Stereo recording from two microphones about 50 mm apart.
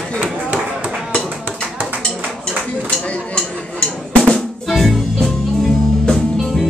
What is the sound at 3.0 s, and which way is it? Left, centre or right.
Drum, left.